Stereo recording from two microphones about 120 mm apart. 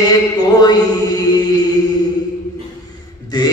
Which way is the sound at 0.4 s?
35° left (ahead or behind).